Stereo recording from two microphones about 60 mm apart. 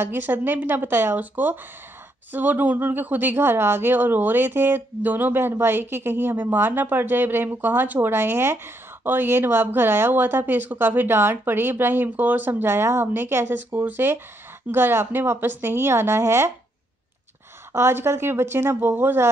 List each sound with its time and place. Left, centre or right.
0.0 s a woman's voice: right
17.7 s a woman's voice: right